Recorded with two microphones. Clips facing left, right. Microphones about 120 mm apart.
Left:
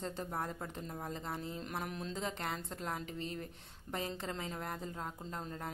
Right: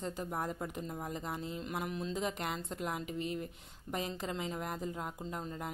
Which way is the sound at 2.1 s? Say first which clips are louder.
Right 2 dB; 15° right (ahead or behind).